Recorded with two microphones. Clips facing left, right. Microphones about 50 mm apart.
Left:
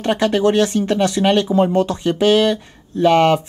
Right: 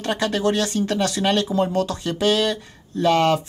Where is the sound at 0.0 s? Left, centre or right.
Left.